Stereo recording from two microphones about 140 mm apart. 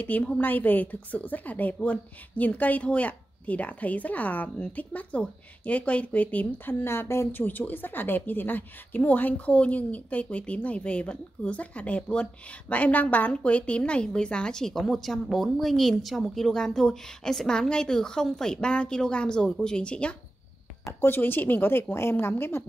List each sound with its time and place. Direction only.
0.0 s a woman's voice: 10° left (ahead or behind)